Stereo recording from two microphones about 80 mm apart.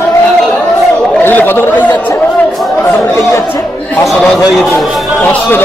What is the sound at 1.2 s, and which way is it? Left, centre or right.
Speech, left.